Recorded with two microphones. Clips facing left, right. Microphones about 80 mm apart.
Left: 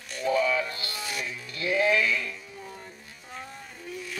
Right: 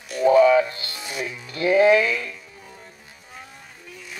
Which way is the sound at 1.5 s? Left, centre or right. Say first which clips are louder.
Right 8 dB; right.